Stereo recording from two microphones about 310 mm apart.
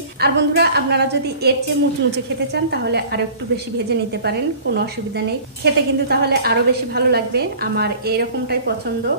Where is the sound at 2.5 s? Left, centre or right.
Right.